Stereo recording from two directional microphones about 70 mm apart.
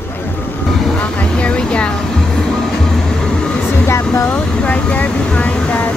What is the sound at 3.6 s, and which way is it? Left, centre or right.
Vehicle, left.